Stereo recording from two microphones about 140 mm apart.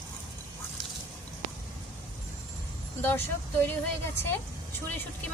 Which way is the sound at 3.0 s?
15° left (ahead or behind).